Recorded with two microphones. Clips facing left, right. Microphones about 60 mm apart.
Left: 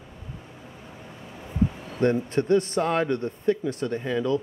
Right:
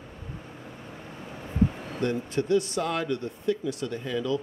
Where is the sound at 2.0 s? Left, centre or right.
Left.